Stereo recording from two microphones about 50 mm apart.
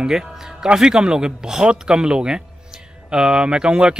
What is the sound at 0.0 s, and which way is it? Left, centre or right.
Speech, centre.